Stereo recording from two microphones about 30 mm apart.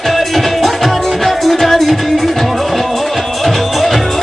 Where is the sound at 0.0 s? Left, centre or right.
Centre.